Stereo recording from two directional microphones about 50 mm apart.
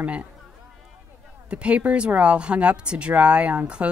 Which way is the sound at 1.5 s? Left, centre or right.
Right.